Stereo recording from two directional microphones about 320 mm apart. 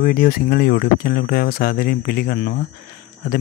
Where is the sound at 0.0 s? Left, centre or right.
Left.